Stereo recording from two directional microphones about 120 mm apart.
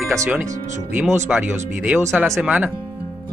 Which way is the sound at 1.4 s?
10° right (ahead or behind).